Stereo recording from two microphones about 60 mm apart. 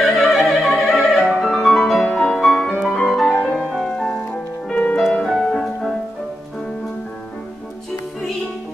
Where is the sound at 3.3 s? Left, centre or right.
Centre.